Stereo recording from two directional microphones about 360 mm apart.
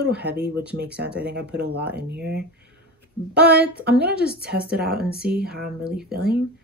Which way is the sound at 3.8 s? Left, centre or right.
Right.